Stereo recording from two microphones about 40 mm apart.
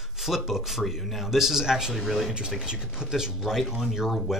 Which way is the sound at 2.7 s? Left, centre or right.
Centre.